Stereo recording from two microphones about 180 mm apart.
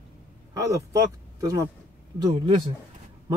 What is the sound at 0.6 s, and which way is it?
Speech, 20° right (ahead or behind).